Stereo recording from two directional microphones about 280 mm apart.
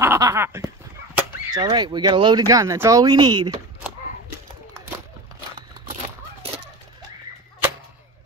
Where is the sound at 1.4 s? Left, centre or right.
Centre.